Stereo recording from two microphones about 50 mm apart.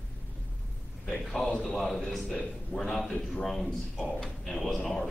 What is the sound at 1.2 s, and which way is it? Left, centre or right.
A man's voice, centre.